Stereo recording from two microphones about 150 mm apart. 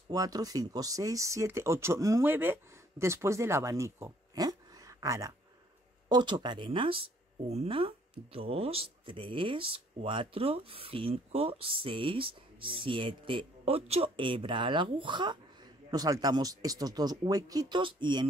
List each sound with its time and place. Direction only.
0.1 s speech: 25° right (ahead or behind)